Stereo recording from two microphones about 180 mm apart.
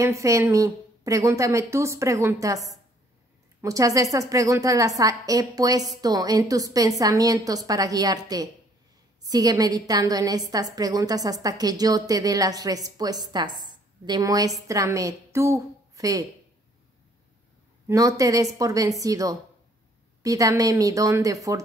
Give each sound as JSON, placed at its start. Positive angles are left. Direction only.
{"t": 0.0, "sound": "a woman's voice", "side_deg": -15}
{"t": 17.8, "sound": "a woman's voice", "side_deg": -20}